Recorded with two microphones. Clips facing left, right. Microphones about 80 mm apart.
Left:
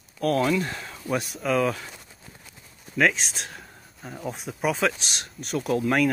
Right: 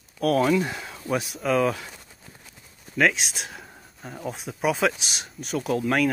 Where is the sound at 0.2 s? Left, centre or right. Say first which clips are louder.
Right 2 dB; centre.